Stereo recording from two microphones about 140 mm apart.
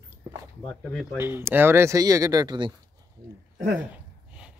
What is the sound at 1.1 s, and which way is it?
Speech, 15° right (ahead or behind).